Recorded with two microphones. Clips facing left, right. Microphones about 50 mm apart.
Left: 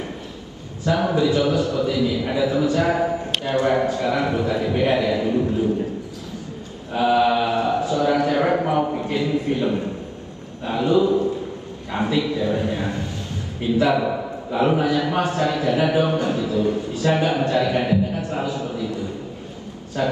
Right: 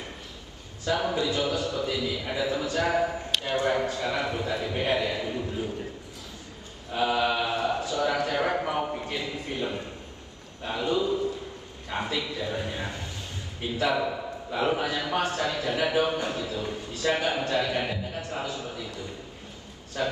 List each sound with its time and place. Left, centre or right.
0.8 s a man's voice: left
7.0 s chant: left
10.7 s a man's voice: left
14.6 s a man's voice: left